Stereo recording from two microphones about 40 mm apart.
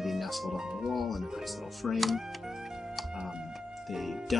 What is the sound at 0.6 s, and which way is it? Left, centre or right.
Speech, centre.